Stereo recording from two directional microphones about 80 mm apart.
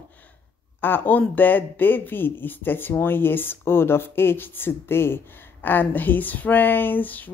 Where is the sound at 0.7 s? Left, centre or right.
Left.